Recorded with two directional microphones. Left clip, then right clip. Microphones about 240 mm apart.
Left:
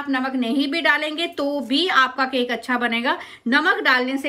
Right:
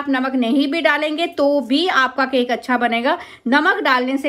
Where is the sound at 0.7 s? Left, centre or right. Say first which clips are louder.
Right 3 dB; centre.